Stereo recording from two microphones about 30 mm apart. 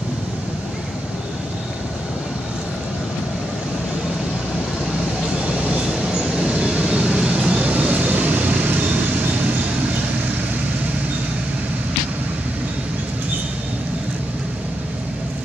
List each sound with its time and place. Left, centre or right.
5.5 s train: right
6.6 s vehicle: right
7.6 s vehicle: right
7.9 s vehicle: right
8.6 s vehicle: right